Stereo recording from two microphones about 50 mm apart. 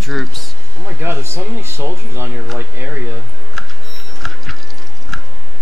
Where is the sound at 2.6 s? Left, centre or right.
Right.